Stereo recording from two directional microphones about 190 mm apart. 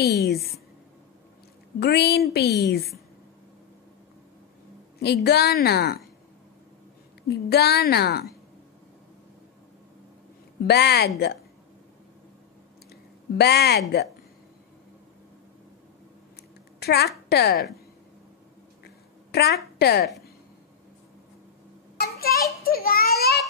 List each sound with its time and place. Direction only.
0.0 s a woman's voice: 60° left (ahead or behind)
1.8 s a woman's voice: 60° left (ahead or behind)
5.0 s a woman's voice: 60° left (ahead or behind)
7.2 s a woman's voice: 55° left (ahead or behind)
10.6 s a woman's voice: 60° left (ahead or behind)
13.3 s a woman's voice: 60° left (ahead or behind)
16.8 s a child's voice: 55° left (ahead or behind)
18.9 s a sound: 55° left (ahead or behind)
19.8 s a woman's voice: 60° left (ahead or behind)
21.9 s a sound: 55° left (ahead or behind)